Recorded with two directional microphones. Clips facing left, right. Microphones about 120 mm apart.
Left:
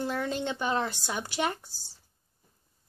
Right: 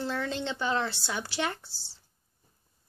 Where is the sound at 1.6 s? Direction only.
45° left (ahead or behind).